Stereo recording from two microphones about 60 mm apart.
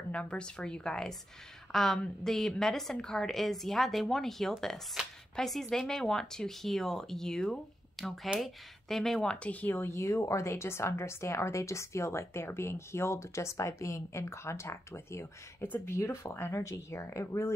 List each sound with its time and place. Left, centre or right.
0.1 s a woman's voice: centre
9.8 s speech: left
16.3 s speech: left
16.6 s speech: left